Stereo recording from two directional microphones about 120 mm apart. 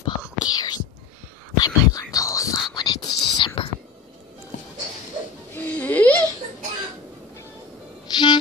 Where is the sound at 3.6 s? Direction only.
45° left (ahead or behind).